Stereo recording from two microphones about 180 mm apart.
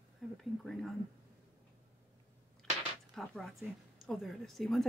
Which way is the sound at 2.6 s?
5° left (ahead or behind).